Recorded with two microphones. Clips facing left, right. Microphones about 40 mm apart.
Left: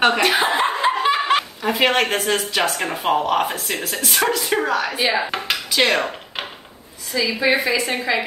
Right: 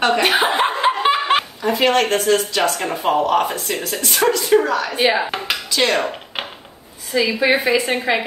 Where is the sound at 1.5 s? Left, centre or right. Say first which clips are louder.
Right 2 dB; centre.